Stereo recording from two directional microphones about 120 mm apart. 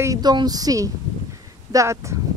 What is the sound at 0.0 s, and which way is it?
A woman's voice, 30° right (ahead or behind).